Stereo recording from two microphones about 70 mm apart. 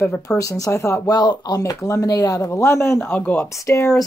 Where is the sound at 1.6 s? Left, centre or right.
Left.